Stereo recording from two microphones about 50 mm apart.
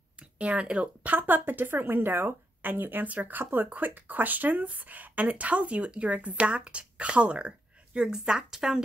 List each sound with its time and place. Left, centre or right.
0.2 s speech: right
1.1 s speech: right; by 8.8 s centre